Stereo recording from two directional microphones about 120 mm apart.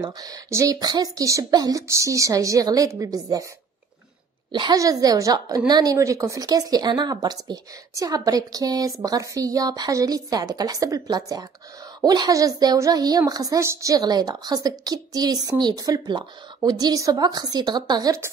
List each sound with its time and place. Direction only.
0.0 s speech: 30° right (ahead or behind)
4.5 s a woman's voice: 35° right (ahead or behind)